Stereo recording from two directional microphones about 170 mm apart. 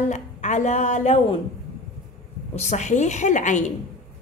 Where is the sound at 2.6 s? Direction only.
45° left (ahead or behind).